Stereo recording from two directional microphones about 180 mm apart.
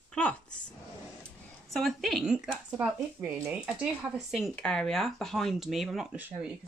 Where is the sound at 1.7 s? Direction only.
Centre (ahead or behind).